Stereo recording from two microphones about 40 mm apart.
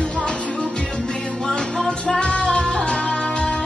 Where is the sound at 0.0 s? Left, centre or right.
Left.